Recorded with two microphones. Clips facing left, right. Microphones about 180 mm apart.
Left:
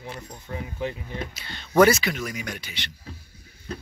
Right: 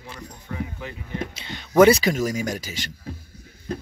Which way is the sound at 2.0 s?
40° right (ahead or behind).